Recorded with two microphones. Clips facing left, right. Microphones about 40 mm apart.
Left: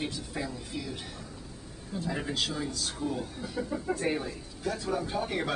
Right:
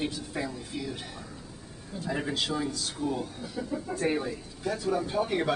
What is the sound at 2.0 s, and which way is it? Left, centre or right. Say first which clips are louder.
A man's voice: right 2 dB; centre.